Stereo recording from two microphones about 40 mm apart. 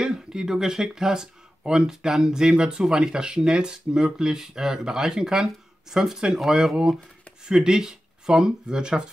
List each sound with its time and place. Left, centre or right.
0.0 s speech: centre
7.4 s speech: centre